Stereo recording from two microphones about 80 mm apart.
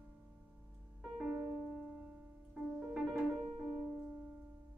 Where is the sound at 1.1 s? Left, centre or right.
Centre.